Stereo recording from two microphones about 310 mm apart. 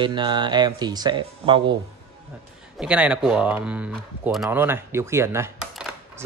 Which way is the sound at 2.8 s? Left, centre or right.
Centre.